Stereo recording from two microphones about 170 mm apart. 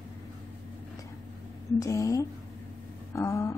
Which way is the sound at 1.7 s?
20° left (ahead or behind).